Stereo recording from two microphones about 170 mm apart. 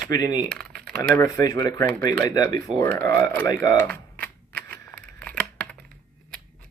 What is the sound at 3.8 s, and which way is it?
Typewriter, 10° left (ahead or behind).